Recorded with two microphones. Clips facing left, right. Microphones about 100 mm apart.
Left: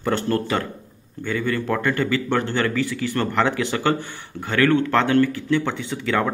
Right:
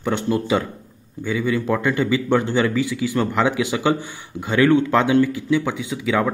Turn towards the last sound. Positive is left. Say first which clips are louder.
# right 2 dB
turn(degrees=-10)  # may be behind; listen again after turning